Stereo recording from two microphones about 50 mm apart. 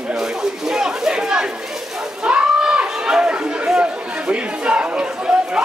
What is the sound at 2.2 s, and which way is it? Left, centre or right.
Chatter, centre.